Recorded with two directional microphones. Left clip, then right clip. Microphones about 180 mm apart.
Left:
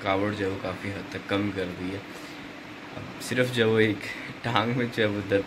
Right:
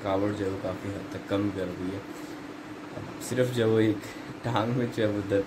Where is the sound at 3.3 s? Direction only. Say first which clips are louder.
Left 2 dB; 10° left (ahead or behind).